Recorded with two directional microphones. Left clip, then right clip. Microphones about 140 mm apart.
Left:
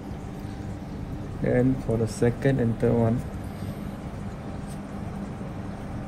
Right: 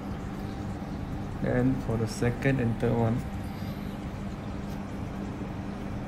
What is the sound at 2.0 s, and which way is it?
Speech, 50° left (ahead or behind).